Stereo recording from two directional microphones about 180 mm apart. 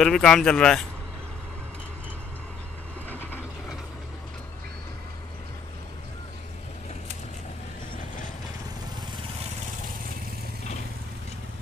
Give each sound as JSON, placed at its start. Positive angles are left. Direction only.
{"t": 0.0, "sound": "speech", "side_deg": 5}
{"t": 3.1, "sound": "vehicle", "side_deg": 10}